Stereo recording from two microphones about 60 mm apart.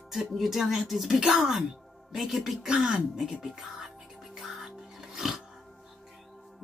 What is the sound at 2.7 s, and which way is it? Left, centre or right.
Speech, centre.